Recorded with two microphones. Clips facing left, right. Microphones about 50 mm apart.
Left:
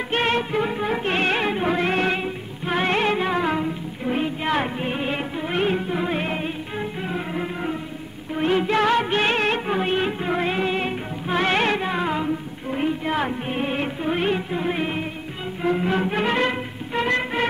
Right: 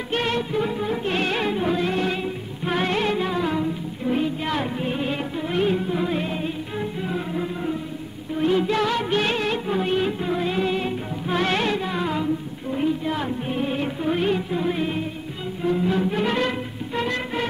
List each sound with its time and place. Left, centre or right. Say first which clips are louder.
0.1 s music: left 2 dB; left
0.8 s music: left 2 dB; left
1.1 s music: left 2 dB; left
2.9 s music: left 2 dB; left
6.8 s music: even; left
11.2 s music: left 2 dB; left
11.6 s music: left 2 dB; left
12.7 s music: left 1 dB; left
14.0 s music: right 1 dB; left
16.3 s music: left 2 dB; left